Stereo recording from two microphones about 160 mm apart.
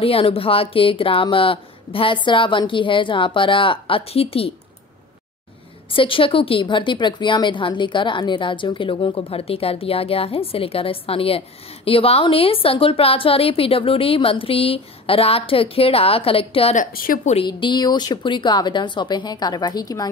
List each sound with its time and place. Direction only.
0.0 s a woman's voice: 35° left (ahead or behind)
5.9 s a woman's voice: 35° left (ahead or behind)
16.7 s speech: 60° left (ahead or behind)
17.5 s speech: 25° left (ahead or behind)